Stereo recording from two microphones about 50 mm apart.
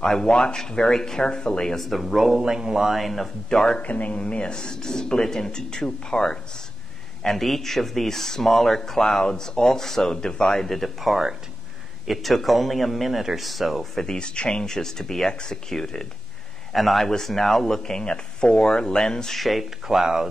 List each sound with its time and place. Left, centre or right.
0.0 s speech: centre
1.8 s speech: centre
3.8 s speech: left
7.2 s speech: centre
14.0 s speech: centre
19.4 s speech: centre